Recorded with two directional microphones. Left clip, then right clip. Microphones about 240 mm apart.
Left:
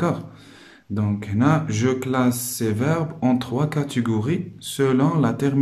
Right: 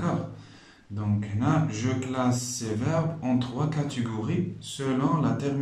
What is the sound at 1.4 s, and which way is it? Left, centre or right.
Speech, left.